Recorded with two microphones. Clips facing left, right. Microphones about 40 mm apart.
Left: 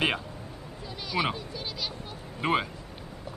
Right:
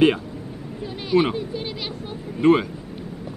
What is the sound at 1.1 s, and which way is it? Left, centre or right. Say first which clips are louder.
Speech: right 10 dB; right.